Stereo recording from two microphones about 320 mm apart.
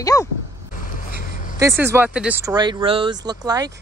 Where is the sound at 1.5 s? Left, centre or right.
Centre.